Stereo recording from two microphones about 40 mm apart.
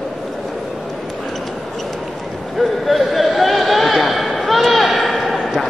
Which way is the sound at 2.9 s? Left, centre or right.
Centre.